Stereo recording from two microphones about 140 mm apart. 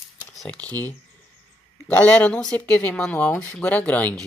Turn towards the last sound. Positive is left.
turn(degrees=10)  # may be behind; listen again after turning